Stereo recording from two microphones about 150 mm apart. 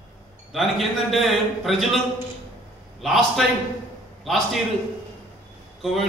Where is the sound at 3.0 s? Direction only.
Centre (ahead or behind).